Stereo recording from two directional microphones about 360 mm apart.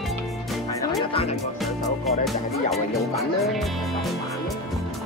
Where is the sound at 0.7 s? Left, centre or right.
Centre.